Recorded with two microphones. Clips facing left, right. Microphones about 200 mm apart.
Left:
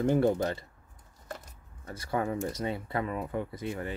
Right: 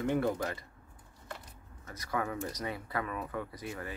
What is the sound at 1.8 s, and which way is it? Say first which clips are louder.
Speech: left 4 dB; 30° left (ahead or behind).